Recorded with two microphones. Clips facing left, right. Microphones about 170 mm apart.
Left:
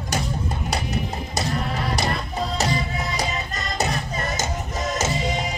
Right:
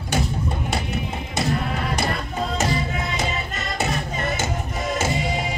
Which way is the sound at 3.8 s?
40° left (ahead or behind).